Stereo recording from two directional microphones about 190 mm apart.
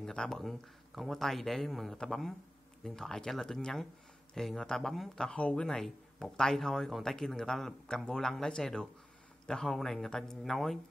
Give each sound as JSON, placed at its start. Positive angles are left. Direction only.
{"t": 0.0, "sound": "speech", "side_deg": 5}